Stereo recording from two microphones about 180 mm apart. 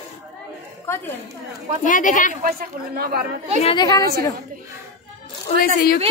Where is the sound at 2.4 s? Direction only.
55° right (ahead or behind).